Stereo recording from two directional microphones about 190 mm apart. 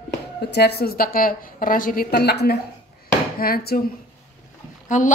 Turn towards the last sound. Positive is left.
turn(degrees=40)  # may be behind; listen again after turning